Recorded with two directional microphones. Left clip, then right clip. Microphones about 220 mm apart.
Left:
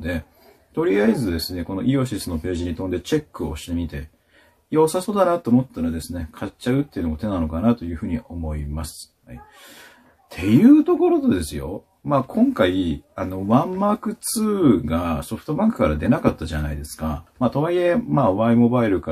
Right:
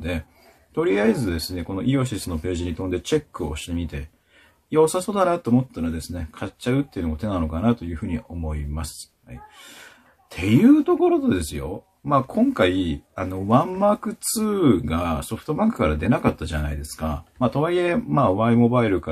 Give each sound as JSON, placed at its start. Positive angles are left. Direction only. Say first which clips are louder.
{"t": 0.7, "sound": "speech", "louder": "left 1 dB", "side_deg": -15}
{"t": 10.3, "sound": "speech", "louder": "left 2 dB", "side_deg": -20}